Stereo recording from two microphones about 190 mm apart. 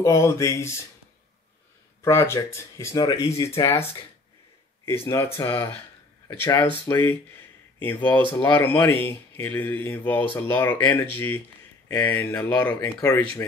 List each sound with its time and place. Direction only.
0.0 s speech: 15° left (ahead or behind)
2.0 s speech: 15° left (ahead or behind)